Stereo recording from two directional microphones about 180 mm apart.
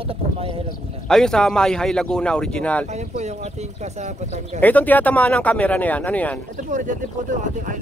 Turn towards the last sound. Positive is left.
turn(degrees=-45)  # may be behind; listen again after turning